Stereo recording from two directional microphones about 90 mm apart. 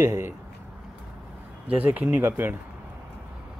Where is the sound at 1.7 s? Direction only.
15° right (ahead or behind).